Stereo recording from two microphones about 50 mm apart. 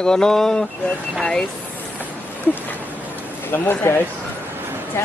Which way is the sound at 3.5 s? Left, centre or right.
Left.